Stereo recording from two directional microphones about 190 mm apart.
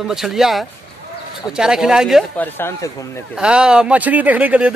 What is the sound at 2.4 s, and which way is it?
Speech, 10° left (ahead or behind).